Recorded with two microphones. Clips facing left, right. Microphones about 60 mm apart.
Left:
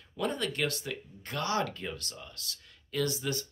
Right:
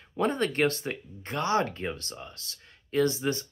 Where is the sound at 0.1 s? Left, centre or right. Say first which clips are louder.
Right 6 dB; right.